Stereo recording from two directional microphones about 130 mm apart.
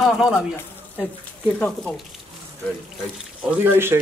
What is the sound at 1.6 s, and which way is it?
Speech, 5° left (ahead or behind).